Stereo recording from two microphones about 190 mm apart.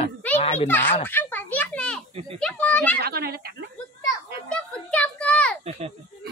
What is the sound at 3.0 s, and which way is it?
Speech, 55° right (ahead or behind).